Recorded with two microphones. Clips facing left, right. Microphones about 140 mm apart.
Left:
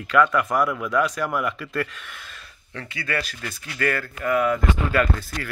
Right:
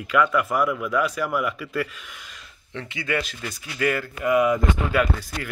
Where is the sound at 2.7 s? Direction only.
20° right (ahead or behind).